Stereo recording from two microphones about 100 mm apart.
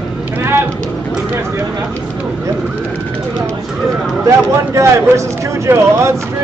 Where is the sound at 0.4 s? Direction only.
20° right (ahead or behind).